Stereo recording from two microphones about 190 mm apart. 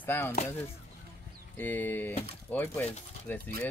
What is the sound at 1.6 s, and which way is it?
Speech, 10° left (ahead or behind).